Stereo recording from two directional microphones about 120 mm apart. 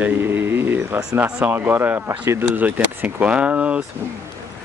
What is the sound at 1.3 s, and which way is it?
Speech, 15° right (ahead or behind).